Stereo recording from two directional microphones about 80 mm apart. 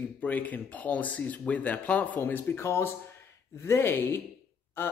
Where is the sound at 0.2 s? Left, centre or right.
Centre.